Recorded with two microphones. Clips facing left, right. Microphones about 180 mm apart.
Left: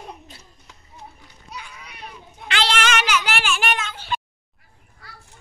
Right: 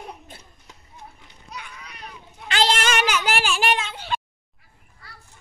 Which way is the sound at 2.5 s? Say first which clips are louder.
Right 1 dB; 40° right (ahead or behind).